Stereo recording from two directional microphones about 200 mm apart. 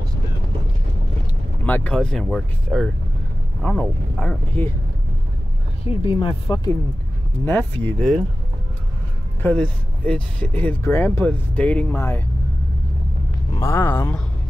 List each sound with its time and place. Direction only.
1.6 s speech: 5° left (ahead or behind)
5.9 s speech: 25° left (ahead or behind)
7.4 s speech: 10° left (ahead or behind)
9.4 s speech: 5° left (ahead or behind)
13.6 s speech: 10° left (ahead or behind)